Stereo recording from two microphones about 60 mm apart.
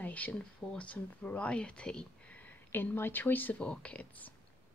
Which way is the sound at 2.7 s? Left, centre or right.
Left.